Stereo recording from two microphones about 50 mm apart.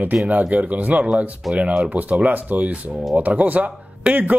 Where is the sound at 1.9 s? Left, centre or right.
Right.